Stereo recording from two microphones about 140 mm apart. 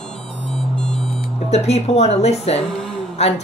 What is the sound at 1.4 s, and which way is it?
A woman's voice, 50° left (ahead or behind).